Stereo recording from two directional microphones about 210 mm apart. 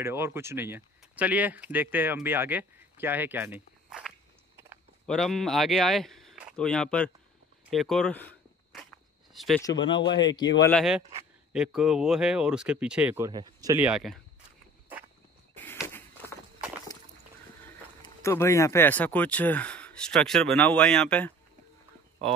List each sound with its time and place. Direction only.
0.0 s speech: 10° right (ahead or behind); by 7.1 s 5° left (ahead or behind)
7.7 s walk: centre (ahead or behind)
9.6 s speech: 20° left (ahead or behind)
10.6 s speech: 5° left (ahead or behind); by 13.7 s 20° right (ahead or behind)
13.7 s speech: 5° right (ahead or behind)
15.5 s walk: 10° left (ahead or behind)
18.2 s speech: 15° left (ahead or behind)